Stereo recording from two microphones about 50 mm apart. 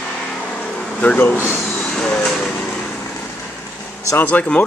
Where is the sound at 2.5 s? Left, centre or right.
Left.